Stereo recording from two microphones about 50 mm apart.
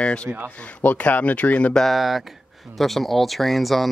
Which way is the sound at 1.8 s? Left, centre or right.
Centre.